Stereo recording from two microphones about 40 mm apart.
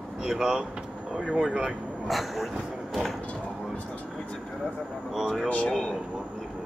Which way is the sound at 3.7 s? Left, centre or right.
Left.